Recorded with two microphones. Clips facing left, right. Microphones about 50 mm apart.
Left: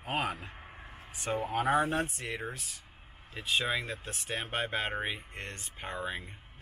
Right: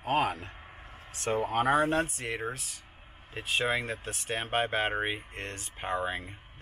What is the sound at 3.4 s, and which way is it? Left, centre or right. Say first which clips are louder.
Speech: right 2 dB; right.